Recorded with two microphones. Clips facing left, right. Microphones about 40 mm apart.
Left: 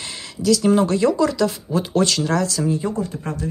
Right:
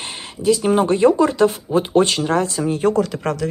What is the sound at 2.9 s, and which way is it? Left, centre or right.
Speech, right.